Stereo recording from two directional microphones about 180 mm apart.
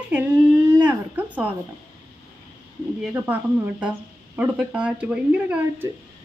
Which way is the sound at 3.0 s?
10° right (ahead or behind).